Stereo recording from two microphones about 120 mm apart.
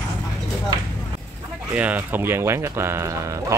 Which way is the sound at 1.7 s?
15° right (ahead or behind).